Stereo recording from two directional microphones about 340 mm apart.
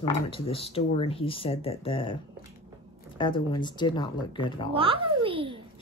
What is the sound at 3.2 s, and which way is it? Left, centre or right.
Speech, centre.